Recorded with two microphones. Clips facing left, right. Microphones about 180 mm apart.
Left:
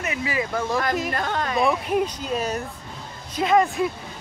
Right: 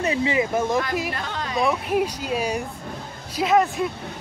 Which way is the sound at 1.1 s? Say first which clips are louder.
Left 4 dB; 50° left (ahead or behind).